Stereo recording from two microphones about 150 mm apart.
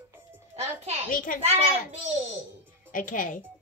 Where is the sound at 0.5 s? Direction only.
45° right (ahead or behind).